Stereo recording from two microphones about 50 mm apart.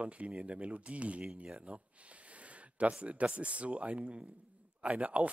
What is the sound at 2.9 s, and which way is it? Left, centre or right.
Speech, right.